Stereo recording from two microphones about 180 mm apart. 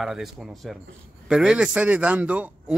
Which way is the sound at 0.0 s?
Centre (ahead or behind).